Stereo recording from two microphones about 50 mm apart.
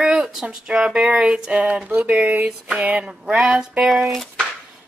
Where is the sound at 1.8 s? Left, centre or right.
Right.